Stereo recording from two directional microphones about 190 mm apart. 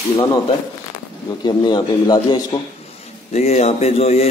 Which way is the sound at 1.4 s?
20° left (ahead or behind).